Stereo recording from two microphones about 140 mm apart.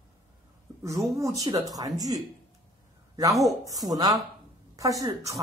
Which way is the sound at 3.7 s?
25° right (ahead or behind).